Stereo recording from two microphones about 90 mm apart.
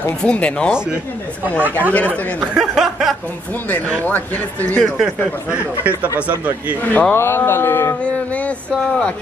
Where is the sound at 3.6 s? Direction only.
20° left (ahead or behind).